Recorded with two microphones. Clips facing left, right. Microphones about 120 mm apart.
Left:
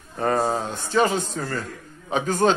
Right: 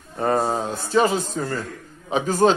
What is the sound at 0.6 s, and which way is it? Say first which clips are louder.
Speech: right 2 dB; 35° right (ahead or behind).